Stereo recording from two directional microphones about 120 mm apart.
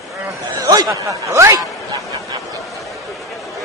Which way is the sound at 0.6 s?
30° right (ahead or behind).